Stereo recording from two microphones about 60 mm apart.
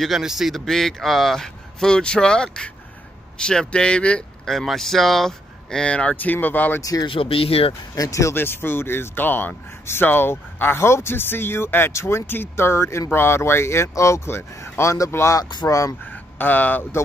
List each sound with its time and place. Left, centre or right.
0.0 s a man's voice: centre
4.5 s a man's voice: centre
6.3 s speech: left
7.9 s speech: left
8.4 s speech: left
15.6 s speech: left